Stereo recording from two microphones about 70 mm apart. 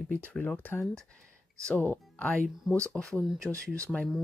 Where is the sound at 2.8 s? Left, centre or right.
Centre.